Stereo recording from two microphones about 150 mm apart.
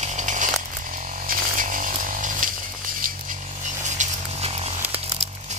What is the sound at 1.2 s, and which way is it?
Chainsaw, 65° right (ahead or behind).